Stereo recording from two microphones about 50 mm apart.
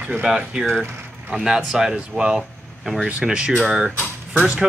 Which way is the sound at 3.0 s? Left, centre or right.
Centre.